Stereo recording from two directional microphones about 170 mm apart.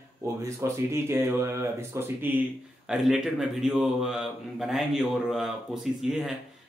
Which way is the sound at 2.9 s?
Centre (ahead or behind).